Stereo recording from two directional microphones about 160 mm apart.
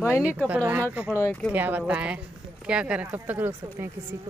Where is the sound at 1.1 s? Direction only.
15° left (ahead or behind).